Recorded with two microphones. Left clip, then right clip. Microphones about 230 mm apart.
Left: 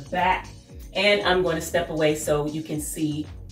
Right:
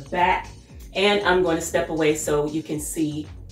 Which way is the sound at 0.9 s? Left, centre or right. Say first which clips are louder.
Right 1 dB; centre.